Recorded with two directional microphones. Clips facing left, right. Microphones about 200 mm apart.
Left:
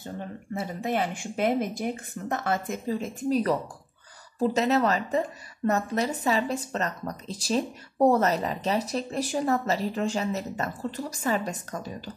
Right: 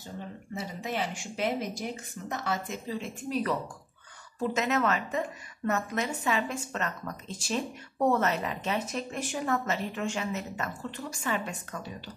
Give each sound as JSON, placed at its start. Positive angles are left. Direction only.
{"t": 0.6, "sound": "a woman's voice", "side_deg": 50}